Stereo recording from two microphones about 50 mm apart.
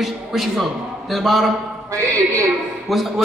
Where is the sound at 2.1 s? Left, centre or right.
Right.